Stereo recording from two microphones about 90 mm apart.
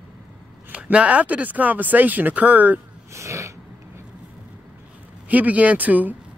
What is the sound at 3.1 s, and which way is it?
Sneeze, 35° right (ahead or behind).